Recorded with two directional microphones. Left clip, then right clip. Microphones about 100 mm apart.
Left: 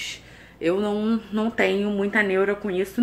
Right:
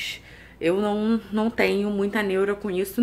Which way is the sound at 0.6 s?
30° right (ahead or behind).